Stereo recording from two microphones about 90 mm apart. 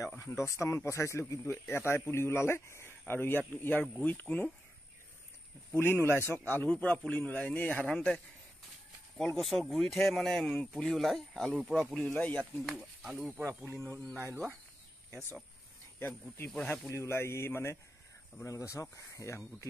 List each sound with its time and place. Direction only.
0.2 s speech: 30° left (ahead or behind)
5.9 s speech: 25° left (ahead or behind)
9.4 s speech: centre (ahead or behind); by 12.4 s 15° left (ahead or behind)
12.7 s speech: 10° right (ahead or behind)
13.7 s speech: 30° right (ahead or behind)
16.4 s speech: 20° left (ahead or behind)
16.9 s speech: 30° left (ahead or behind)